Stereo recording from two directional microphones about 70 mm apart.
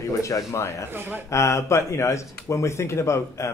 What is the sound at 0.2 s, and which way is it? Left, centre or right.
Speech, left.